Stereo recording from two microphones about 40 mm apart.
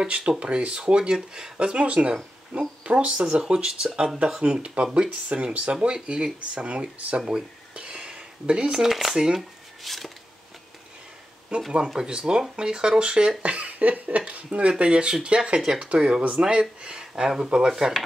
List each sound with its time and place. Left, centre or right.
0.0 s speech: right
1.6 s speech: right
4.4 s speech: right
7.2 s a sound: right
8.7 s speech: centre
9.1 s speech: centre
9.8 s a sound: centre
11.5 s speech: right
13.4 s a sound: right
14.3 s speech: right; by 18.0 s centre